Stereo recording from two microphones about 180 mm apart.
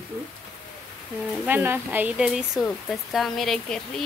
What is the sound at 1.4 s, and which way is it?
Speech, 10° right (ahead or behind).